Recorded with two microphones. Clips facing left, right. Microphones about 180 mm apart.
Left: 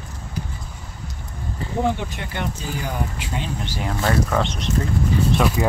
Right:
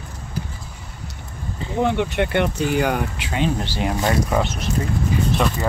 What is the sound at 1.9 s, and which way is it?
Speech, 65° right (ahead or behind).